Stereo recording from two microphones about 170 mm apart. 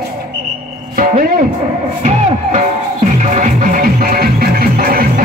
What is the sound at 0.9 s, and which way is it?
Speech, 55° right (ahead or behind).